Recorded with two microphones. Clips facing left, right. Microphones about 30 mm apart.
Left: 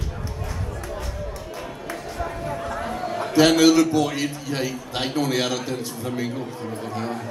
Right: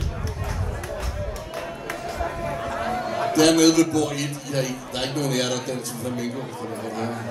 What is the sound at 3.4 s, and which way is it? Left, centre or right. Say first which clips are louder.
A man's voice: left 1 dB; centre.